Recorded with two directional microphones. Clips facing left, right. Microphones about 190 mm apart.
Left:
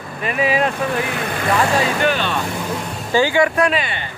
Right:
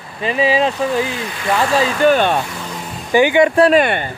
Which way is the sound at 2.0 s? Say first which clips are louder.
Right 7 dB; 50° right (ahead or behind).